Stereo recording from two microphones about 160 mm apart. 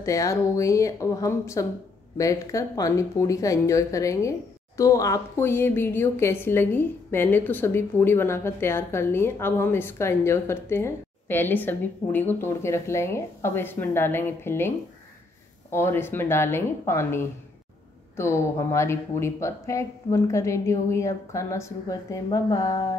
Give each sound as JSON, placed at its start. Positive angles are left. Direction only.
{"t": 0.0, "sound": "speech", "side_deg": 20}
{"t": 15.7, "sound": "speech", "side_deg": 15}